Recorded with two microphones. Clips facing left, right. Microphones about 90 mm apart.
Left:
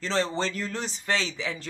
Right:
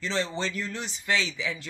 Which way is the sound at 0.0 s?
40° left (ahead or behind).